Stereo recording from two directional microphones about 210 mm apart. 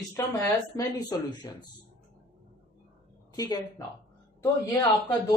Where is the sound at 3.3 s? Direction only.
20° left (ahead or behind).